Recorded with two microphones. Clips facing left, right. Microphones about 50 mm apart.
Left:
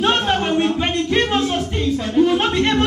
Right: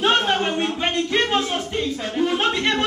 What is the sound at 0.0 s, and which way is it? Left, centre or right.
Music, centre.